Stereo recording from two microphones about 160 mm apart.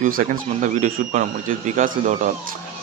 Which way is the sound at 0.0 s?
50° right (ahead or behind).